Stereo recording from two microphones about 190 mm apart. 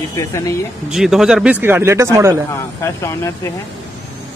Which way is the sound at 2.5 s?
15° left (ahead or behind).